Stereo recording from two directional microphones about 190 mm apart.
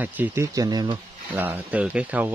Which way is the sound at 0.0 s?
10° right (ahead or behind).